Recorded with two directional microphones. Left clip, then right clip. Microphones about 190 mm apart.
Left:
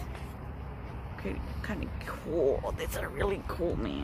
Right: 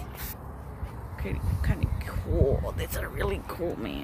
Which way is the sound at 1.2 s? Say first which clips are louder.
Right 2 dB; centre (ahead or behind).